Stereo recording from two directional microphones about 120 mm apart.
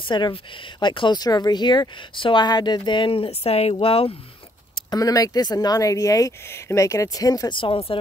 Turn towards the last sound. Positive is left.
turn(degrees=50)  # may be behind; listen again after turning